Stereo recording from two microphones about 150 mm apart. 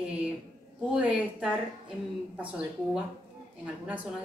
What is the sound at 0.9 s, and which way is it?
Speech, 5° right (ahead or behind).